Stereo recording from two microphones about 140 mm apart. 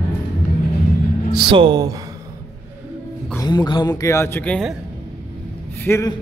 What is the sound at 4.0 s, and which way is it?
Speech, 20° left (ahead or behind).